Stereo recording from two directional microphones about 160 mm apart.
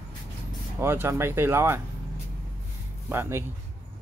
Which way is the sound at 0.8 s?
15° right (ahead or behind).